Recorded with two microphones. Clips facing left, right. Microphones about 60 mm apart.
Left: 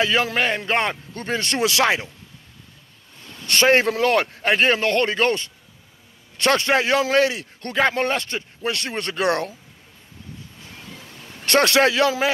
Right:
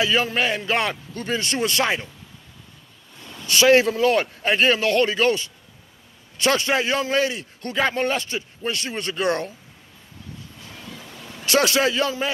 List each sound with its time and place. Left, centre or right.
0.0 s a man's voice: left
3.6 s speech: left
3.9 s a man's voice: left
11.4 s a man's voice: left